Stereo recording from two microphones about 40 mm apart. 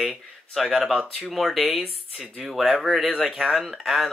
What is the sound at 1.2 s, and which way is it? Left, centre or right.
Speech, centre.